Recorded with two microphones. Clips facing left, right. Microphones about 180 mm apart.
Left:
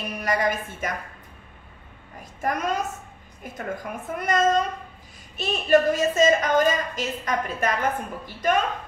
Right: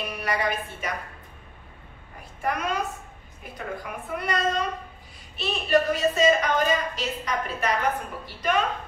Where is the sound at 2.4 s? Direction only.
45° left (ahead or behind).